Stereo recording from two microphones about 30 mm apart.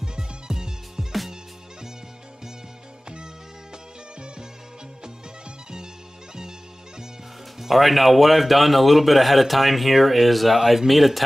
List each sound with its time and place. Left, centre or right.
0.0 s music: centre
7.6 s speech: centre